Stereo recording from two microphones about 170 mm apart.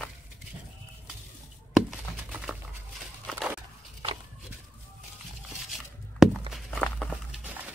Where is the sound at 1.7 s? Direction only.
5° right (ahead or behind).